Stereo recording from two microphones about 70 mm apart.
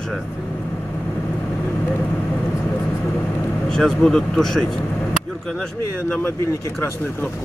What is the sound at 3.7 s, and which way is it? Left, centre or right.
Speech, centre.